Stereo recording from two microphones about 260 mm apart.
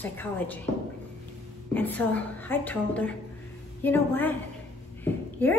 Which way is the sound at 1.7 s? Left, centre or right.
Centre.